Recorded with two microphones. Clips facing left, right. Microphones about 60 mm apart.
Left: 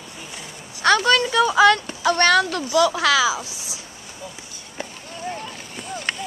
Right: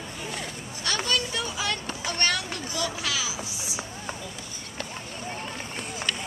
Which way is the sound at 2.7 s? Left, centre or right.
Left.